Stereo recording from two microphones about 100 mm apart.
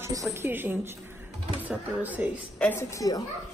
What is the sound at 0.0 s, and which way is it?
A woman's voice, 30° right (ahead or behind).